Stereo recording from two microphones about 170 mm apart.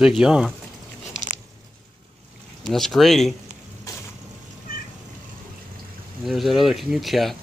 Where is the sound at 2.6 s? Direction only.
Centre (ahead or behind).